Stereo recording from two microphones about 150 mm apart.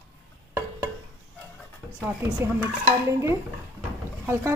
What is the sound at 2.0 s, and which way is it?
A woman's voice, 10° right (ahead or behind).